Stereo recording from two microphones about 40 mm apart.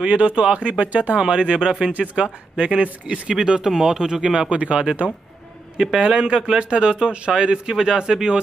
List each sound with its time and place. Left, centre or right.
0.1 s a man's voice: right
5.9 s a man's voice: right